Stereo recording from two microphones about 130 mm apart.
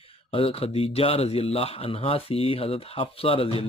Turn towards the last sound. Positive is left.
turn(degrees=45)  # may be behind; listen again after turning